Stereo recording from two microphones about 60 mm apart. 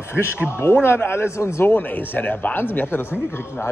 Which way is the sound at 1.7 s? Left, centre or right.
Left.